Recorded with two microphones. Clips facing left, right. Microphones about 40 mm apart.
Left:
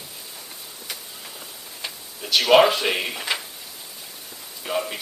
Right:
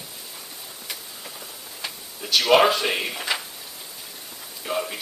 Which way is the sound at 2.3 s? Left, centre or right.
Centre.